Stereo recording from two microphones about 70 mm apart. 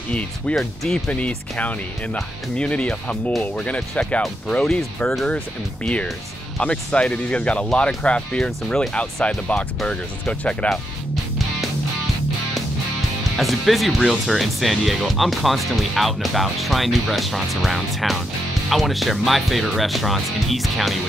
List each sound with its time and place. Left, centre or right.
0.1 s speech: centre
6.6 s speech: centre
13.4 s speech: centre